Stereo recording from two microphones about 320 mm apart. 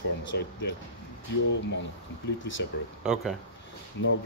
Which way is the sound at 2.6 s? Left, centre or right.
Left.